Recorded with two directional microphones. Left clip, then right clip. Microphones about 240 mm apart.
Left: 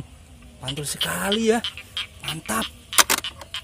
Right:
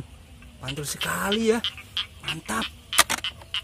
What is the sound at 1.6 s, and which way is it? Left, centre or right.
Duck, left.